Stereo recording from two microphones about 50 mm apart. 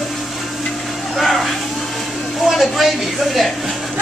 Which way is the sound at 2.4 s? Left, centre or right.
Centre.